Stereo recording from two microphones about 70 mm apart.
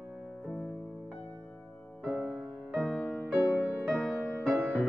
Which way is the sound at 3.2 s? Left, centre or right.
Right.